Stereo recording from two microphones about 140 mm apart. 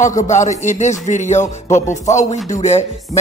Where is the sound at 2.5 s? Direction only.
50° left (ahead or behind).